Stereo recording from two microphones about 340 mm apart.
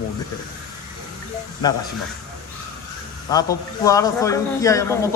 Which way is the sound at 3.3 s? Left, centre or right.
Centre.